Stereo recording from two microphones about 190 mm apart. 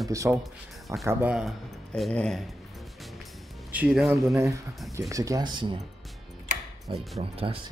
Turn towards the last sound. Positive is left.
turn(degrees=-30)  # may be behind; listen again after turning